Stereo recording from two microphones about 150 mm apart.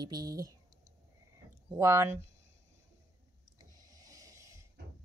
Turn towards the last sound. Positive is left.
turn(degrees=-20)  # may be behind; listen again after turning